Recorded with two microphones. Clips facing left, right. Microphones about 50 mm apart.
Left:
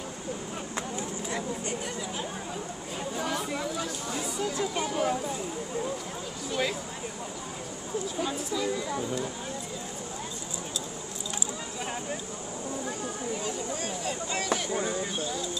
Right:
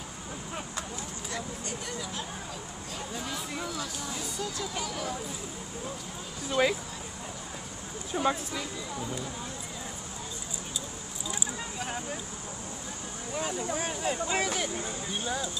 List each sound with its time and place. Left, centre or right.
0.7 s a sound: left
4.4 s speech: left
6.6 s speech: centre
8.2 s speech: right
13.4 s speech: centre